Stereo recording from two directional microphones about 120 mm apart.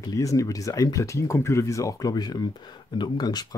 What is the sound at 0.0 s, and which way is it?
Speech, 30° left (ahead or behind).